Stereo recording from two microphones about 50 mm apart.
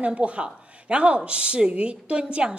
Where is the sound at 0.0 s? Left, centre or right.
Right.